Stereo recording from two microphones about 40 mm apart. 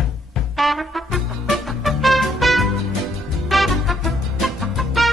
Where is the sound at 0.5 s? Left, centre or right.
Centre.